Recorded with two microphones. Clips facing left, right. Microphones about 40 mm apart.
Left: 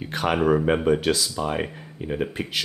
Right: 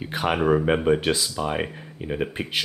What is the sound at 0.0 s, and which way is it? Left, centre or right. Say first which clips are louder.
Speech: left 1 dB; centre.